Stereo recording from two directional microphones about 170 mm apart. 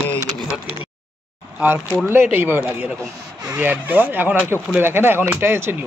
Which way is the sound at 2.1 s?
10° right (ahead or behind).